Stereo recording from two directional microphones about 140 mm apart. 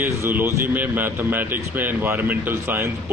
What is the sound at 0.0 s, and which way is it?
Speech, 15° right (ahead or behind).